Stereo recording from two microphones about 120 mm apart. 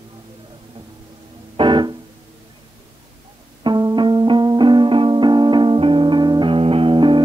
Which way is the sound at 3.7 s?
40° right (ahead or behind).